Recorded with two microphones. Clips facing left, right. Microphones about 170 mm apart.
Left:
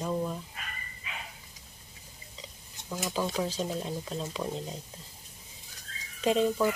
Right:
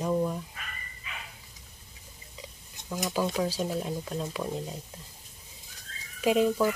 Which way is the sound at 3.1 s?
5° right (ahead or behind).